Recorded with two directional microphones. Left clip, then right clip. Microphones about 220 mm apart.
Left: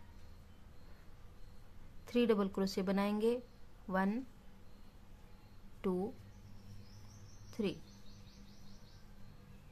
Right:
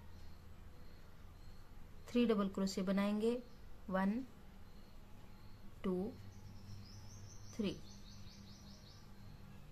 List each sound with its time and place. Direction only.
2.0 s a woman's voice: 20° left (ahead or behind)
5.8 s speech: 20° left (ahead or behind)
7.6 s a woman's voice: 20° left (ahead or behind)